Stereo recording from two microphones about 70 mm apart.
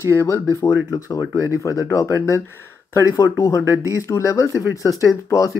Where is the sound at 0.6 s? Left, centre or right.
Left.